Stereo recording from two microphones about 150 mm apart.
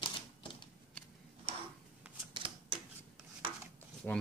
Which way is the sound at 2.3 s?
35° right (ahead or behind).